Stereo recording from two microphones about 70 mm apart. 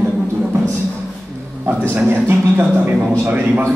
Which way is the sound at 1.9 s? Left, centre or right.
Right.